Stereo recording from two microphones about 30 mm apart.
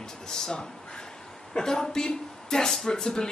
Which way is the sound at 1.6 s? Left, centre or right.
Left.